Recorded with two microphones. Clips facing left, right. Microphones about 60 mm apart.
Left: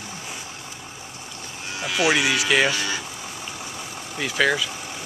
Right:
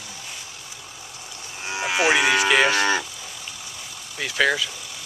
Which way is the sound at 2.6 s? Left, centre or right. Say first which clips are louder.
Right 4 dB; right.